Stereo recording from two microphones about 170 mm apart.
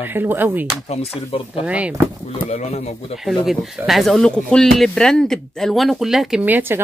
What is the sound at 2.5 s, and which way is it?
Speech, 40° left (ahead or behind).